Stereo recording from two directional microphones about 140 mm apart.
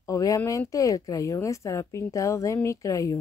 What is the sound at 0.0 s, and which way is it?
Speech, 25° left (ahead or behind).